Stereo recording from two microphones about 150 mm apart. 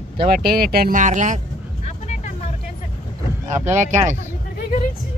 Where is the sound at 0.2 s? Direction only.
90° right; by 1.4 s 55° right (ahead or behind).